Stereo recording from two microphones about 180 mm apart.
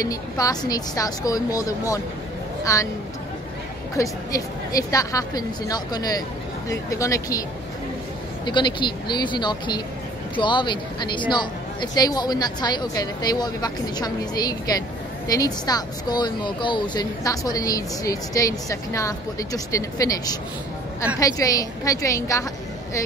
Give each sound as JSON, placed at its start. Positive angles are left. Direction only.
{"t": 0.0, "sound": "speech", "side_deg": 20}
{"t": 3.9, "sound": "speech", "side_deg": 20}
{"t": 8.5, "sound": "speech", "side_deg": 25}